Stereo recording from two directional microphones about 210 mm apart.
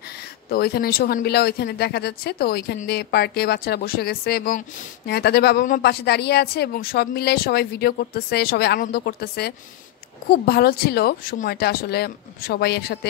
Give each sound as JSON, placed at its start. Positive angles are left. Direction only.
{"t": 0.5, "sound": "speech", "side_deg": 45}